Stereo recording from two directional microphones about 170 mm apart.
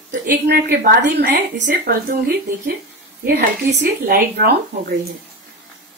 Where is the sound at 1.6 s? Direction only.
60° right (ahead or behind).